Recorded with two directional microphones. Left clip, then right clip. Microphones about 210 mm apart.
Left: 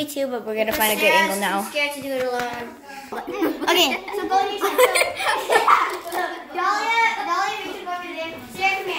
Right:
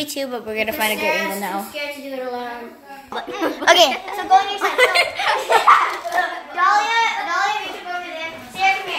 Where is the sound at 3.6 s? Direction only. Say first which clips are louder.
Right 7 dB; 25° right (ahead or behind).